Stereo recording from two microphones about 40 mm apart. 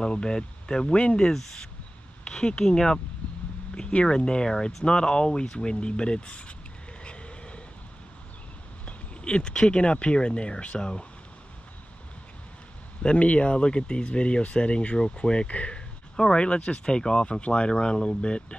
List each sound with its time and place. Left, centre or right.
0.0 s speech: left
1.2 s speech: centre
7.0 s vehicle: left
8.8 s speech: left
13.0 s speech: left